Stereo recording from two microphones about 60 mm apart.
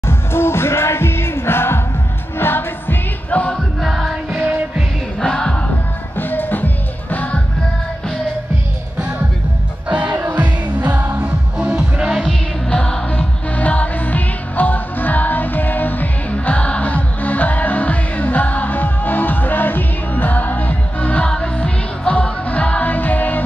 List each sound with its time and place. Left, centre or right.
0.0 s music: left
3.3 s music: left
3.5 s music: centre
4.3 s music: right
5.2 s music: centre
6.1 s music: left
9.8 s music: right
12.3 s music: centre
13.6 s music: left